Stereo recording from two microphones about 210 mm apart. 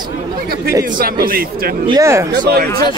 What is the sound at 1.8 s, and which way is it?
Speech, 20° right (ahead or behind).